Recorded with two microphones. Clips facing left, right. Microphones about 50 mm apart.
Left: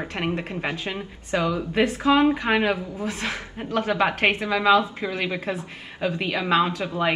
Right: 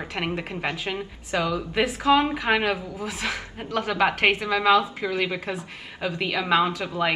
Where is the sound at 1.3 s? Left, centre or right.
Left.